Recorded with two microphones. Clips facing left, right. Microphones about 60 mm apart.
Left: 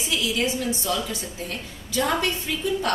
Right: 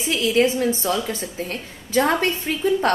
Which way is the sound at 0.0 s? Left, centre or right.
Right.